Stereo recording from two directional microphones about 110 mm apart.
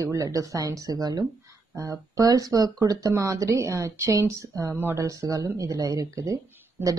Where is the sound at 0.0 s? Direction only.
30° right (ahead or behind).